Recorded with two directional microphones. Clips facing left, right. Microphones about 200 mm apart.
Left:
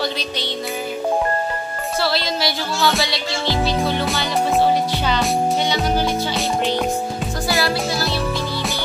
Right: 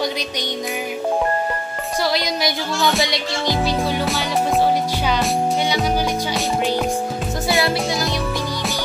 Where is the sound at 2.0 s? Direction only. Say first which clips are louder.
Right 1 dB; 15° right (ahead or behind).